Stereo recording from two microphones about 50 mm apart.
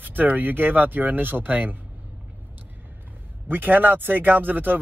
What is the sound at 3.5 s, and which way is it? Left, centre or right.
Speech, right.